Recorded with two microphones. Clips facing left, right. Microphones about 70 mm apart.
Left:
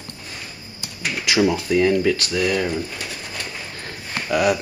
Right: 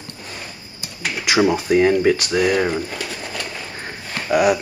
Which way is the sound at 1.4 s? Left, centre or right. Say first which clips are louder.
Right 2 dB; right.